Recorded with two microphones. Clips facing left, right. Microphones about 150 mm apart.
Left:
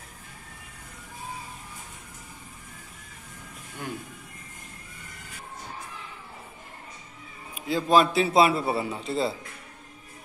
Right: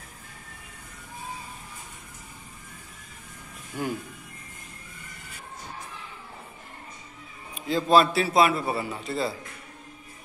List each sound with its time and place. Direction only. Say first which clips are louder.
3.8 s speech: right 6 dB; 5° right (ahead or behind)
7.5 s a man's voice: right 1 dB; 10° left (ahead or behind)